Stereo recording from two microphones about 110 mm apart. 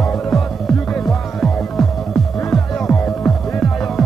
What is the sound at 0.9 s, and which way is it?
Music, 5° left (ahead or behind).